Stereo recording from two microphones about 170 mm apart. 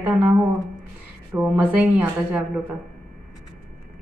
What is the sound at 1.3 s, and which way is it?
A woman's voice, 10° right (ahead or behind).